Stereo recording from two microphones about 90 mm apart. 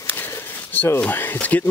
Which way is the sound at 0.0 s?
25° left (ahead or behind).